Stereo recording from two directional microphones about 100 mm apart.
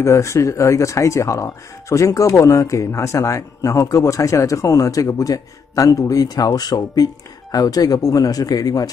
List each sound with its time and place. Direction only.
0.0 s speech: 30° left (ahead or behind)